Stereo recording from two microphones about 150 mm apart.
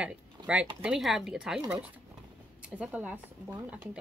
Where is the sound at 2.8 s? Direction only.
10° right (ahead or behind).